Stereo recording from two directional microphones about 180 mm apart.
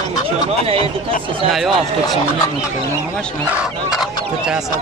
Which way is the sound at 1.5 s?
Centre (ahead or behind).